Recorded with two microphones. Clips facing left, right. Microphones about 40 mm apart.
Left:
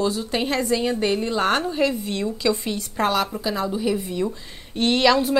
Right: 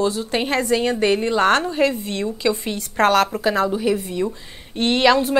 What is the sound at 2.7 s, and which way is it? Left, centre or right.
A woman's voice, right.